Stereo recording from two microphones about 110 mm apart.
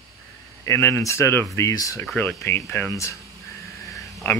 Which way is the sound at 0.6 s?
20° left (ahead or behind).